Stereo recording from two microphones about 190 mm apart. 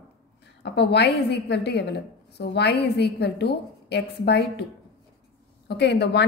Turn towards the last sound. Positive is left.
turn(degrees=60)  # may be behind; listen again after turning